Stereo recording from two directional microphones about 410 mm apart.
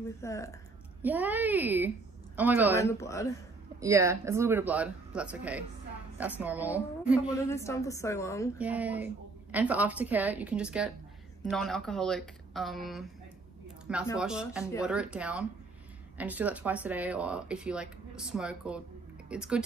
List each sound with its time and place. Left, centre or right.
0.2 s a woman's voice: centre
1.0 s speech: centre
2.9 s a woman's voice: centre
3.8 s speech: centre
7.2 s a woman's voice: centre
8.5 s speech: centre